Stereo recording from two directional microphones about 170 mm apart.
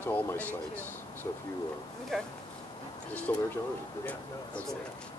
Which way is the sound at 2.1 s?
Centre (ahead or behind).